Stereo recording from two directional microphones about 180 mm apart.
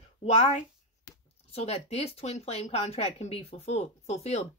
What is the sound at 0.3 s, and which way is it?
Speech, 40° left (ahead or behind).